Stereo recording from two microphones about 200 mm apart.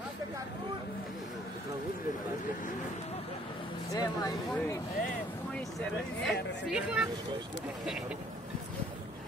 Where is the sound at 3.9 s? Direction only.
15° left (ahead or behind).